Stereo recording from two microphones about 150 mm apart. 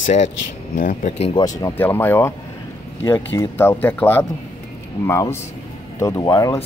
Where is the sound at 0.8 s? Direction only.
60° left (ahead or behind).